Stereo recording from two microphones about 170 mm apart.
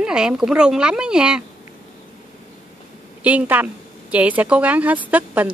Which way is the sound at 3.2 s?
10° right (ahead or behind).